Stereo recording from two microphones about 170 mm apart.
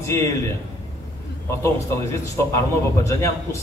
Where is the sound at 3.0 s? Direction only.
15° left (ahead or behind).